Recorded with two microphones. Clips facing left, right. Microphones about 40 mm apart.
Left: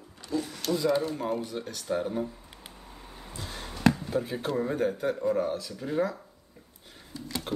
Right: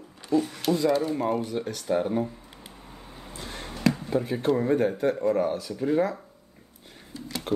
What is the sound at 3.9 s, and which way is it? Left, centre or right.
Speech, centre.